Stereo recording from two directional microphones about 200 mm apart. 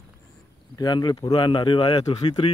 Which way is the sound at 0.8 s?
20° left (ahead or behind).